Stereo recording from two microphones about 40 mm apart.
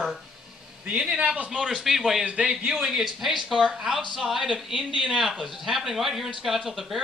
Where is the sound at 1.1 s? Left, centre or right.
Right.